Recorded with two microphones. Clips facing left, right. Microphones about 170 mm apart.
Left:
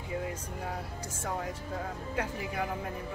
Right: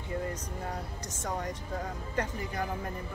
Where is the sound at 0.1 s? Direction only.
5° left (ahead or behind).